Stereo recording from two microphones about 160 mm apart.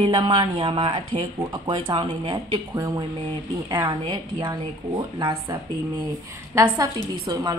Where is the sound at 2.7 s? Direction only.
20° right (ahead or behind).